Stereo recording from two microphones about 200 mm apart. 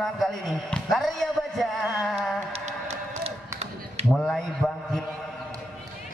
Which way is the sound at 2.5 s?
35° right (ahead or behind).